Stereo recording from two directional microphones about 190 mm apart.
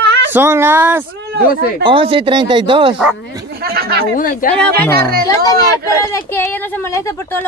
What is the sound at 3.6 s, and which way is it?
Speech, 55° right (ahead or behind).